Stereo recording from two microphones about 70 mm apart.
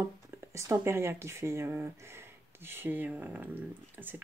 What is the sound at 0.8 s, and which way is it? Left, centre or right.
Speech, right.